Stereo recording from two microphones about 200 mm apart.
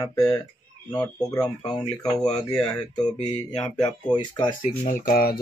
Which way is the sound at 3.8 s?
20° left (ahead or behind).